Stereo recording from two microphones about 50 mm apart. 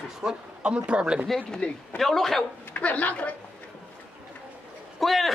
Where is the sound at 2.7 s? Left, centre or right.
Left.